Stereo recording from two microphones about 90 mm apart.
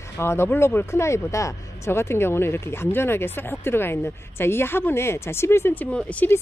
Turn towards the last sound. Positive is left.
turn(degrees=15)  # may be behind; listen again after turning